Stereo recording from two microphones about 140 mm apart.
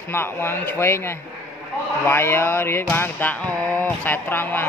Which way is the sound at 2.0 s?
15° left (ahead or behind).